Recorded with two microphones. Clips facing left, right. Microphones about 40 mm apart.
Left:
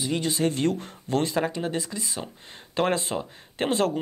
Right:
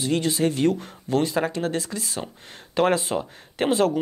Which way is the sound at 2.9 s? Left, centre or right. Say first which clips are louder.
Right 3 dB; centre.